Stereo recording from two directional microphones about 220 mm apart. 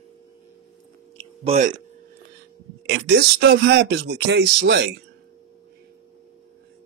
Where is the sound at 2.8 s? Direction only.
50° right (ahead or behind).